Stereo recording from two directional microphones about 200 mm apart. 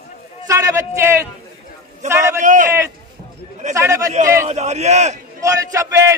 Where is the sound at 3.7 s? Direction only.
15° right (ahead or behind).